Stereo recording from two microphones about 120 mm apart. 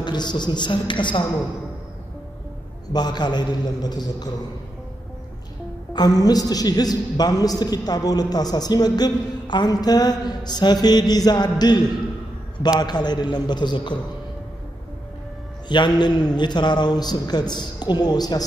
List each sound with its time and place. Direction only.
0.0 s a man's voice: 35° left (ahead or behind)
2.9 s a man's voice: 35° left (ahead or behind)
5.9 s a man's voice: 30° left (ahead or behind)
12.8 s a man's voice: 35° left (ahead or behind)
15.7 s a man's voice: 40° left (ahead or behind)